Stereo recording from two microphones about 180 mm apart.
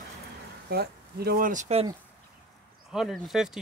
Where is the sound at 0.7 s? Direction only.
60° right (ahead or behind); by 1.9 s 40° right (ahead or behind).